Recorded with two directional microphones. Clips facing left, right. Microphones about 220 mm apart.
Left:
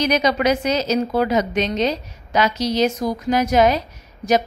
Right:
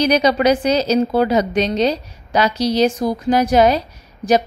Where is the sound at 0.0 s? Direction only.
35° right (ahead or behind).